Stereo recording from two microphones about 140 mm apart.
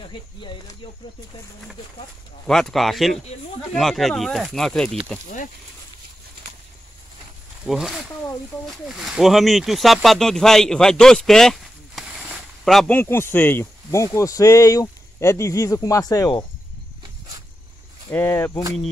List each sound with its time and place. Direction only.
2.4 s speech: 5° left (ahead or behind)
7.6 s speech: centre (ahead or behind)
12.9 s speech: 15° left (ahead or behind)
18.1 s speech: 15° left (ahead or behind)